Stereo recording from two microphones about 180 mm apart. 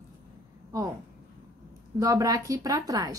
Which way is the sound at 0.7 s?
20° right (ahead or behind).